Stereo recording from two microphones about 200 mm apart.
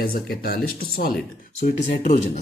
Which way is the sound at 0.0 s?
50° left (ahead or behind).